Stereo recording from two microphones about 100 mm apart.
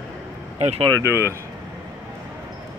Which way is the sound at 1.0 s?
25° right (ahead or behind).